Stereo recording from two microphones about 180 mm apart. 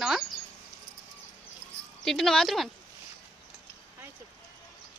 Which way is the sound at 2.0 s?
Centre (ahead or behind).